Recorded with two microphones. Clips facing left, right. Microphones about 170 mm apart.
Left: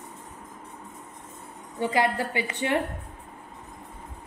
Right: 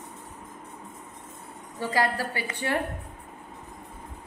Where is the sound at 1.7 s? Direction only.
20° left (ahead or behind).